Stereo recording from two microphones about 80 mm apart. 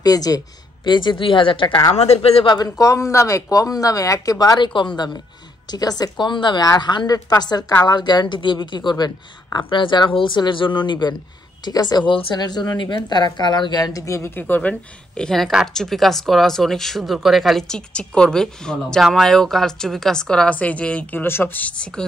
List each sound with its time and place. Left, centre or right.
0.0 s speech: left
0.8 s a woman's voice: left
2.4 s speech: left
2.8 s speech: left
4.6 s a woman's voice: left
14.3 s a woman's voice: centre